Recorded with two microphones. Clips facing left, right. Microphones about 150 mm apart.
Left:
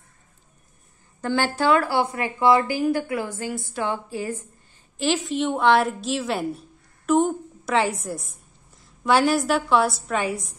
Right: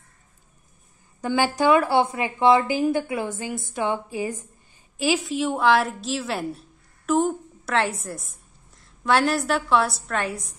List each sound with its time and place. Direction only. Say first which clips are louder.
1.2 s a woman's voice: right 1 dB; 15° right (ahead or behind)